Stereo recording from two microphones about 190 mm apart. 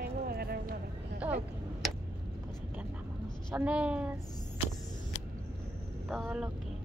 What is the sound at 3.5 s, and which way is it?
Speech, 5° right (ahead or behind).